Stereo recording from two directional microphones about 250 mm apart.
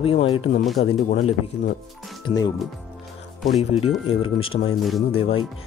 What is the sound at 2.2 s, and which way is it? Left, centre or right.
Speech, centre.